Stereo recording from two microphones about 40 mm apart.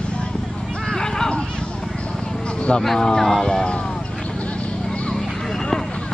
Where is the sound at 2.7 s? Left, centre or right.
Centre.